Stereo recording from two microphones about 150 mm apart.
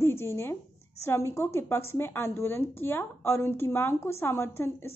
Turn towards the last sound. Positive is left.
turn(degrees=15)  # may be behind; listen again after turning